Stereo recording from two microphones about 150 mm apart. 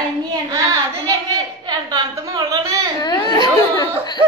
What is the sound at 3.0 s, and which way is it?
Speech, 30° left (ahead or behind).